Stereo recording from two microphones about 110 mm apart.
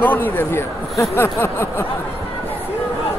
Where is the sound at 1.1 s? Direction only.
20° left (ahead or behind).